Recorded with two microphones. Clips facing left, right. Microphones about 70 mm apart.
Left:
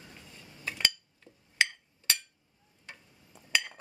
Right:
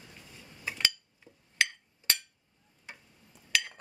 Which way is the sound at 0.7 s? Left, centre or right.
Centre.